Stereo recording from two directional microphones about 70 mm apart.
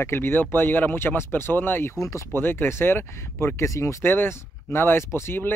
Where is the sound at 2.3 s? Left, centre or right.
Left.